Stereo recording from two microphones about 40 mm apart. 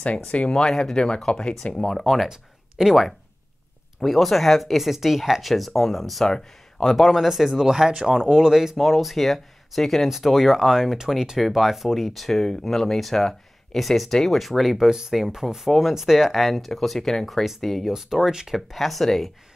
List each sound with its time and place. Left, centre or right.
0.0 s speech: left
0.5 s speech: centre
1.8 s speech: centre
2.8 s speech: centre
4.0 s speech: centre
8.7 s speech: centre
10.0 s speech: centre
14.9 s speech: centre
17.9 s speech: centre
18.7 s speech: centre